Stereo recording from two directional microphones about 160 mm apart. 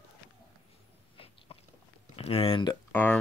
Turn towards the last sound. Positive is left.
turn(degrees=10)  # may be behind; listen again after turning